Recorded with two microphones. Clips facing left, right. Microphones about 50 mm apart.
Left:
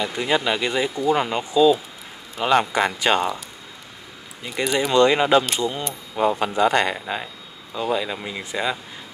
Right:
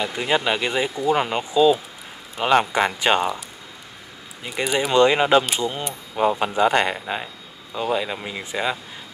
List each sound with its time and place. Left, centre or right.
0.0 s speech: right
4.6 s speech: right
5.9 s speech: centre